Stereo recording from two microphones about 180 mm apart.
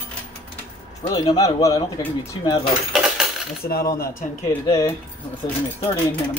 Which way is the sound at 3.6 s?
55° left (ahead or behind).